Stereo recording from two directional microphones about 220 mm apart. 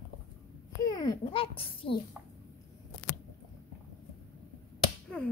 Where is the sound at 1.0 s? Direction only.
20° left (ahead or behind).